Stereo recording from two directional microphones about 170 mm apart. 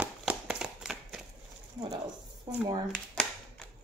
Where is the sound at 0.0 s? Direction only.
5° right (ahead or behind).